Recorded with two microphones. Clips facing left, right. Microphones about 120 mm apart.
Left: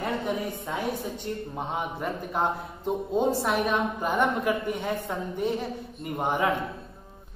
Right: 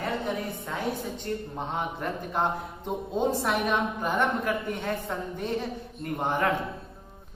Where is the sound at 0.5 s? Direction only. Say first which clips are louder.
Left 1 dB; 15° left (ahead or behind).